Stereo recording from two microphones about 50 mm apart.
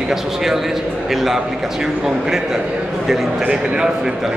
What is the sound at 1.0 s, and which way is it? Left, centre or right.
Speech, centre.